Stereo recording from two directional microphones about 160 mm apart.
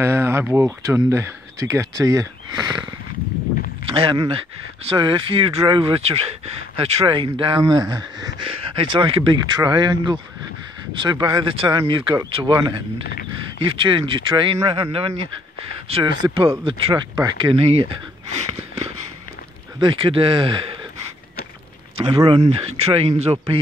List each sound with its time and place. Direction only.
0.0 s speech: 15° right (ahead or behind)
3.9 s speech: 30° right (ahead or behind)
13.0 s speech: 70° left (ahead or behind)
13.6 s speech: 35° right (ahead or behind)
19.8 s speech: 30° right (ahead or behind)
21.9 s speech: 35° right (ahead or behind)